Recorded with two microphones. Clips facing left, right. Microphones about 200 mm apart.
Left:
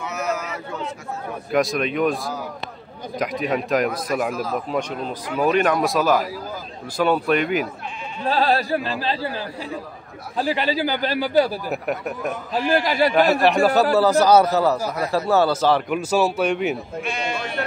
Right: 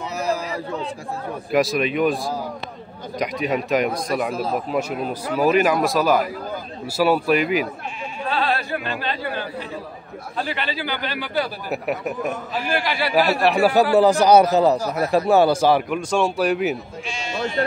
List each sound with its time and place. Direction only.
0.2 s a sound: 35° right (ahead or behind)
1.5 s speech: centre (ahead or behind)
4.3 s speech: 30° right (ahead or behind)
4.6 s a man's voice: 5° right (ahead or behind)
8.3 s speech: 35° left (ahead or behind)
10.3 s a man's voice: 35° left (ahead or behind)
11.7 s speech: centre (ahead or behind)
12.8 s a man's voice: 45° left (ahead or behind)
13.1 s a man's voice: centre (ahead or behind)
15.9 s speech: 5° left (ahead or behind)
17.0 s speech: 55° left (ahead or behind)